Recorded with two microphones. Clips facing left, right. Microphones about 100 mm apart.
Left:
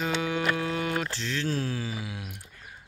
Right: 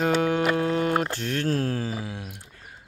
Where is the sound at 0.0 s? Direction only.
50° right (ahead or behind).